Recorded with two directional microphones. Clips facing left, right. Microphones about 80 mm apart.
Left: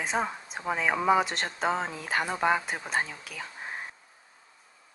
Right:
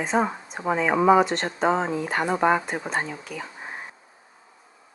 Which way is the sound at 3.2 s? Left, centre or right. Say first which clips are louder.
Right 4 dB; centre.